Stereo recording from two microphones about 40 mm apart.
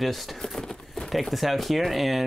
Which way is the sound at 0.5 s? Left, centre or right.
Centre.